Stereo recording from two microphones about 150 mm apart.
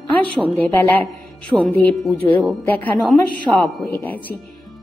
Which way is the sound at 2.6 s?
10° left (ahead or behind).